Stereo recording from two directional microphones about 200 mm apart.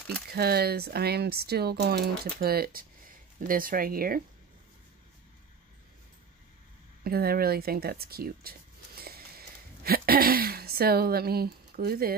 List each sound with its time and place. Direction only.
0.3 s speech: 50° right (ahead or behind)
7.0 s speech: 50° right (ahead or behind)